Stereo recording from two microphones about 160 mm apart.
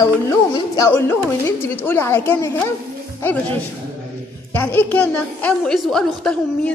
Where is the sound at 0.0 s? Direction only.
20° left (ahead or behind).